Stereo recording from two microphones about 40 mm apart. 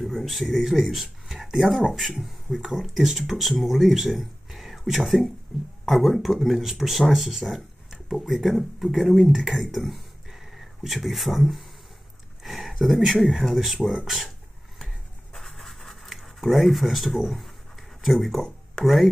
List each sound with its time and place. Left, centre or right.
0.0 s speech: centre
9.8 s a sound: centre
12.4 s speech: centre
15.3 s scratch: centre
18.8 s speech: left